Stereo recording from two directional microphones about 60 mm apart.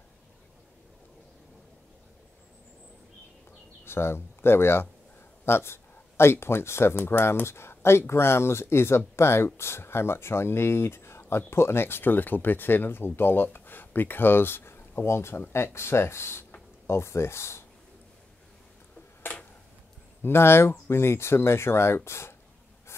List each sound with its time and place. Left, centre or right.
3.8 s speech: left
20.2 s speech: left